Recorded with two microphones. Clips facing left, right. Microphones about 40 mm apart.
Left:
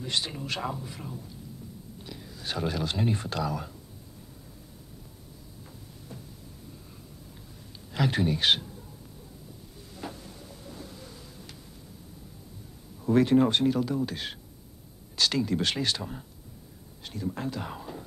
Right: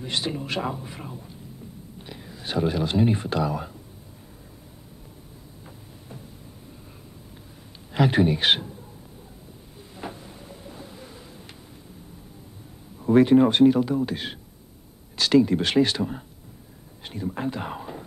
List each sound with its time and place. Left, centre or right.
0.0 s a man's voice: right
7.9 s a man's voice: right
9.9 s a sound: right
13.0 s a man's voice: right